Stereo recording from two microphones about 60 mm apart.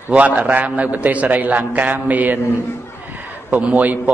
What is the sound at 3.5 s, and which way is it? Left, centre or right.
Speech, right.